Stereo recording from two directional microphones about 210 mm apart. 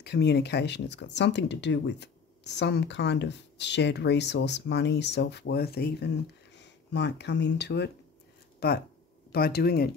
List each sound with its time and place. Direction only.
0.0 s speech: 50° left (ahead or behind)